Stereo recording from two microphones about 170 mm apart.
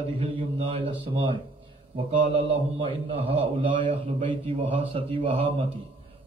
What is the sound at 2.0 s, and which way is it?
A man's voice, 35° right (ahead or behind).